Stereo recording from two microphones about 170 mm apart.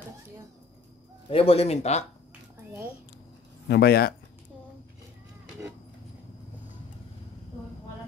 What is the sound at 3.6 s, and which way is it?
Speech, 70° left (ahead or behind).